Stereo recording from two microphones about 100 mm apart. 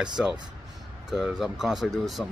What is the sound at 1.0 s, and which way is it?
Speech, 5° right (ahead or behind).